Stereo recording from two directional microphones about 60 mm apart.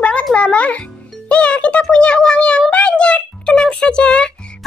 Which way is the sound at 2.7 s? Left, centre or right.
Centre.